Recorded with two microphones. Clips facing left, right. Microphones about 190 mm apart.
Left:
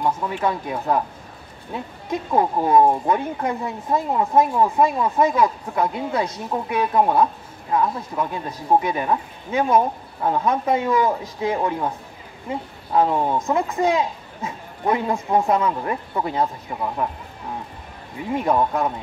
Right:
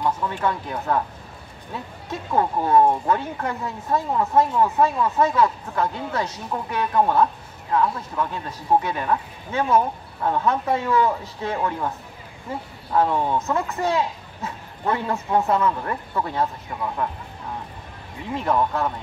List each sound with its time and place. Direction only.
0.3 s speech: 15° left (ahead or behind)
2.0 s speech: 15° left (ahead or behind)
12.9 s speech: 20° left (ahead or behind)
18.3 s speech: 15° left (ahead or behind)